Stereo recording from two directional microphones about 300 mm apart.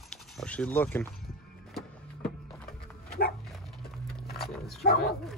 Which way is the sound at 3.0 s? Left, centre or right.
Left.